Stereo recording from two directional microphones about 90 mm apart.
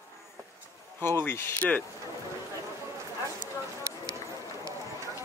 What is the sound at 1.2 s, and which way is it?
Speech, 20° left (ahead or behind).